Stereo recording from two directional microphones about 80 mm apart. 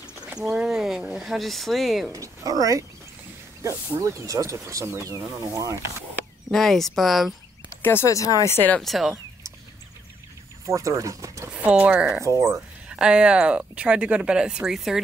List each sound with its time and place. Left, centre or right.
0.0 s a sound: centre
1.1 s speech: centre
2.1 s speech: right
4.0 s speech: right
6.5 s speech: centre
7.8 s speech: left
8.1 s speech: left
8.8 s speech: centre
10.7 s speech: right
11.5 s speech: centre
12.2 s speech: right
12.8 s speech: centre